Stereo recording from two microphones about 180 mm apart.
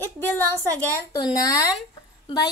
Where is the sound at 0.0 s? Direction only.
10° left (ahead or behind).